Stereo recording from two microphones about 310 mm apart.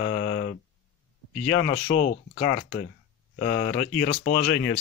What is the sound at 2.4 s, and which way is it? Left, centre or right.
Speech, left.